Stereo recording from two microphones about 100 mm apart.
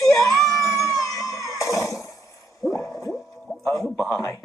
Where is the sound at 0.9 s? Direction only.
35° left (ahead or behind).